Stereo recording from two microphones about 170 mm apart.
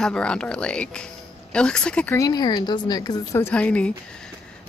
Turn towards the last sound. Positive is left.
turn(degrees=5)  # may be behind; listen again after turning